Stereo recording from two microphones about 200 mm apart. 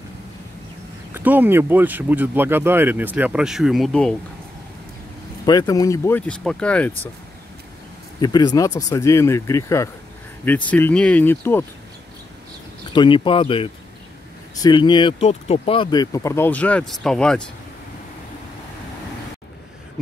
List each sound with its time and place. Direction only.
1.1 s speech: 10° right (ahead or behind)
5.4 s speech: 20° left (ahead or behind)
8.2 s speech: 20° left (ahead or behind)
12.9 s speech: 25° left (ahead or behind); by 17.4 s 5° left (ahead or behind)